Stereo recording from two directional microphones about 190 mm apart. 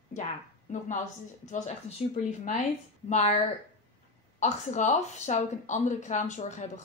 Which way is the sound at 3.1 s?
35° left (ahead or behind).